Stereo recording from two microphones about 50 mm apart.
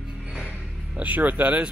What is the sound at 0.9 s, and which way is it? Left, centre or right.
Speech, right.